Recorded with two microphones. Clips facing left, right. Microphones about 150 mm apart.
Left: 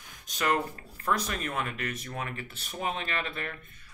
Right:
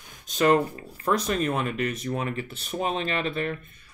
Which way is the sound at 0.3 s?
25° right (ahead or behind).